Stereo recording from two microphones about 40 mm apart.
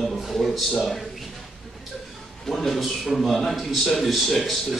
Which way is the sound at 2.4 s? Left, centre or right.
Centre.